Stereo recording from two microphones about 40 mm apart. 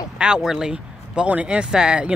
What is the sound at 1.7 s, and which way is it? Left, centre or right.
Speech, right.